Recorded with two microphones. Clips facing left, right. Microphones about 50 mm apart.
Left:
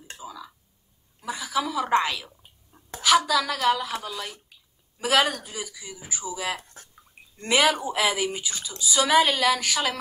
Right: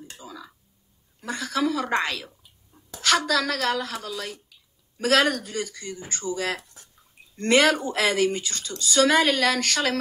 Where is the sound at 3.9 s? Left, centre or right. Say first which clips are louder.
Even; left.